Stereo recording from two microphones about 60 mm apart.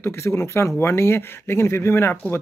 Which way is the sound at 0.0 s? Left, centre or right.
Left.